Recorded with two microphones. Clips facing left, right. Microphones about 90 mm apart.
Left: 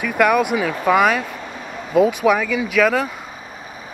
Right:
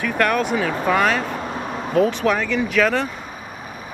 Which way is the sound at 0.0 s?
10° left (ahead or behind).